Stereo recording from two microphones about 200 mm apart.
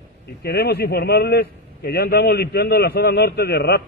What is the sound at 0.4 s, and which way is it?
A man's voice, 55° left (ahead or behind).